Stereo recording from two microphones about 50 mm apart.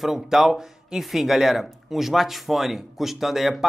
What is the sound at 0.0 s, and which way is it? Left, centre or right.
Speech, centre.